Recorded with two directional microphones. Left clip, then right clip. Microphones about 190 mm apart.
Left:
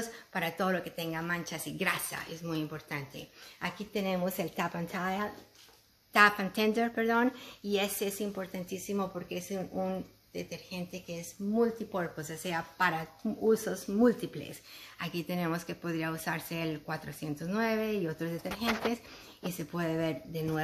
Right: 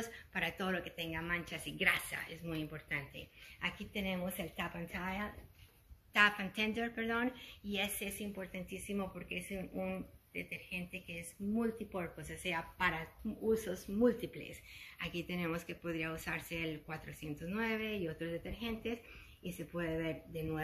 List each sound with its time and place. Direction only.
0.3 s speech: 40° left (ahead or behind); by 3.0 s 25° left (ahead or behind)
3.2 s speech: 45° left (ahead or behind)
6.1 s speech: 40° left (ahead or behind)